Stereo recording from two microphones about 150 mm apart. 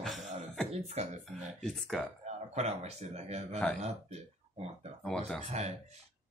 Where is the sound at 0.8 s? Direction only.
50° right (ahead or behind).